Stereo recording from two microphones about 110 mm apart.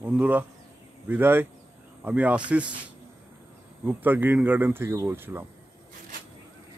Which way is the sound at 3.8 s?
15° right (ahead or behind).